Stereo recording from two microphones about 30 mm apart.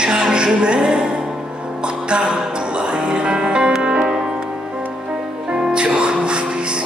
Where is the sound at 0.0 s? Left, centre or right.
Right.